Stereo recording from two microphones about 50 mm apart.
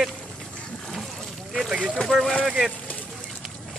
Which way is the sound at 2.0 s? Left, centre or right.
Centre.